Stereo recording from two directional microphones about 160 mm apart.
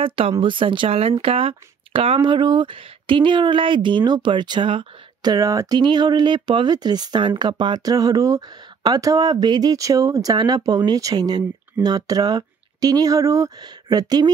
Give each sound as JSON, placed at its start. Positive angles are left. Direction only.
{"t": 0.0, "sound": "speech", "side_deg": -35}